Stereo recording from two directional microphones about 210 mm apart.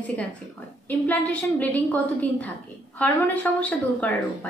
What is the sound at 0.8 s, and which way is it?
A woman's voice, 10° left (ahead or behind).